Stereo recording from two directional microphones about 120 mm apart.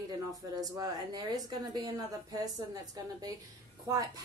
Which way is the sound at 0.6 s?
30° right (ahead or behind).